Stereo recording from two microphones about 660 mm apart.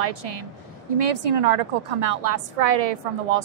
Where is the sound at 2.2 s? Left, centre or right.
Right.